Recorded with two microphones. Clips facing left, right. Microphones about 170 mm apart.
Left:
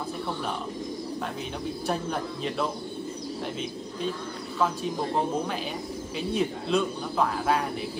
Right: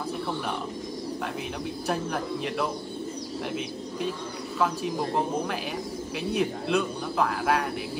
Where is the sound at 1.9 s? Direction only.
Centre (ahead or behind).